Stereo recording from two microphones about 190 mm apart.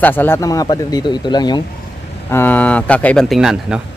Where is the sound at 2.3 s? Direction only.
10° left (ahead or behind).